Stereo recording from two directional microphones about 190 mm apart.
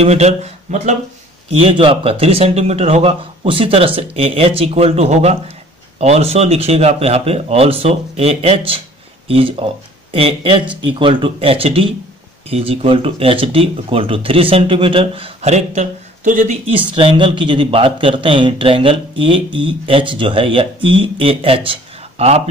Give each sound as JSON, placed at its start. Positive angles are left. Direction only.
{"t": 0.0, "sound": "a man's voice", "side_deg": -35}
{"t": 16.7, "sound": "a man's voice", "side_deg": -25}